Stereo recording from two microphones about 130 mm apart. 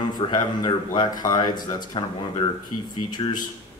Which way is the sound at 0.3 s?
30° left (ahead or behind).